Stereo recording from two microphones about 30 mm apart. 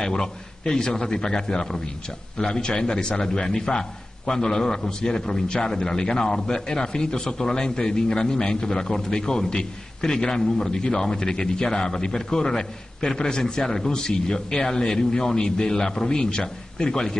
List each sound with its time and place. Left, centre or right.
0.0 s speech: left
3.3 s speech: centre